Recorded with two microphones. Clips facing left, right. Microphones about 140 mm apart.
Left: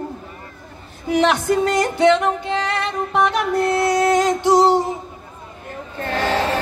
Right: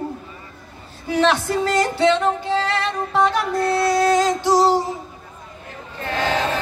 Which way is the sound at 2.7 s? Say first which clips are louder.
Even; 20° left (ahead or behind).